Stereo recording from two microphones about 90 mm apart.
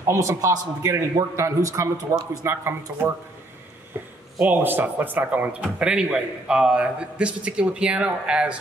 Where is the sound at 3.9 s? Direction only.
25° right (ahead or behind).